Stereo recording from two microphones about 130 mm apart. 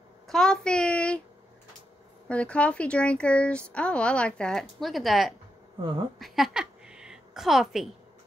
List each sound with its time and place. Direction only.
0.3 s speech: 5° left (ahead or behind)
2.2 s speech: 10° left (ahead or behind)
5.8 s speech: 40° right (ahead or behind)
6.1 s a sound: centre (ahead or behind)